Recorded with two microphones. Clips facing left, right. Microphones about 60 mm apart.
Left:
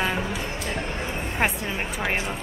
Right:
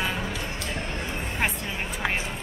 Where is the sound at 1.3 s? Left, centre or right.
Centre.